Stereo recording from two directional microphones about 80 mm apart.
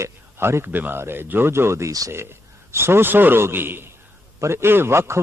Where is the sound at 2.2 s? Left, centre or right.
Right.